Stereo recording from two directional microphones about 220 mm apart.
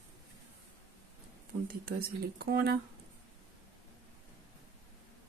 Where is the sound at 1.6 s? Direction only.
45° right (ahead or behind).